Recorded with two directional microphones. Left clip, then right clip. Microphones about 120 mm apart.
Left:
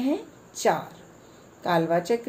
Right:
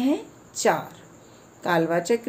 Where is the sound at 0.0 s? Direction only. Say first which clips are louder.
Right 3 dB; 30° right (ahead or behind).